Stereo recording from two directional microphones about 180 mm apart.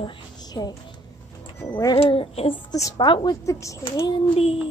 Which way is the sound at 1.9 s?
30° left (ahead or behind).